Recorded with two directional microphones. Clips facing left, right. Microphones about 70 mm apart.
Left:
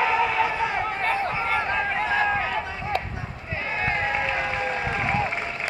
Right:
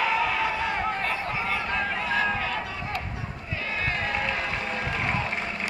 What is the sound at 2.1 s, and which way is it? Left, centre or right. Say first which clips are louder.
Run: left 2 dB; left.